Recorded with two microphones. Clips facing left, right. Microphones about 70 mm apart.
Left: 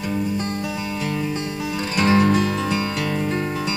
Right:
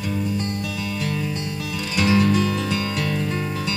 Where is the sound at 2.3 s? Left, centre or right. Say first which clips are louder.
Left 1 dB; centre.